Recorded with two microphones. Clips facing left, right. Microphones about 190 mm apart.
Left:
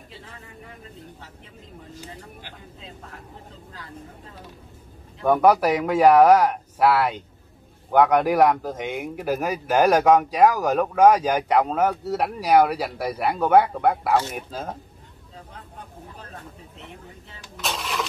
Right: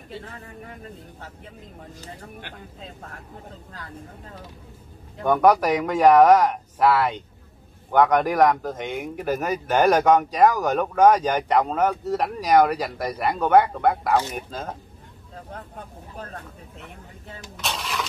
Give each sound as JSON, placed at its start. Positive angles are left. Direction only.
{"t": 5.2, "sound": "speech", "side_deg": 5}
{"t": 17.6, "sound": "cash register", "side_deg": 0}